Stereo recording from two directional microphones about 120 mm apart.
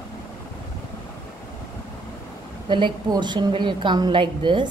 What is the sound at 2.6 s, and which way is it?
A woman's voice, 40° right (ahead or behind).